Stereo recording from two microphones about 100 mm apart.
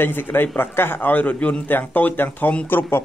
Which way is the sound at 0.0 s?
20° left (ahead or behind).